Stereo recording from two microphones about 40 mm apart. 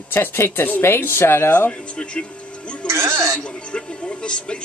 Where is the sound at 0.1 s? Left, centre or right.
Left.